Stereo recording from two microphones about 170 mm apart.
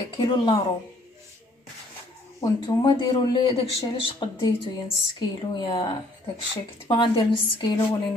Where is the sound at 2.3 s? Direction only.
25° left (ahead or behind).